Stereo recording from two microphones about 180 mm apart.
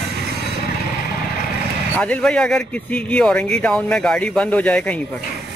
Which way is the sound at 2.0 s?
5° left (ahead or behind).